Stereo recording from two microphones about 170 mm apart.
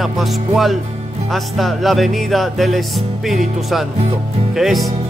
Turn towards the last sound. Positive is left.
turn(degrees=0)  # may be behind; listen again after turning